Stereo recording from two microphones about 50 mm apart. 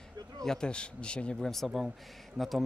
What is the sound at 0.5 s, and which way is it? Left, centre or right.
Speech, centre.